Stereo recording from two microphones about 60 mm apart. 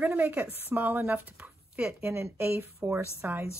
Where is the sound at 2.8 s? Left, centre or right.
Right.